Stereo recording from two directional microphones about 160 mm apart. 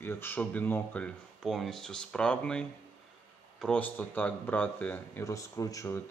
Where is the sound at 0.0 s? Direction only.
15° left (ahead or behind).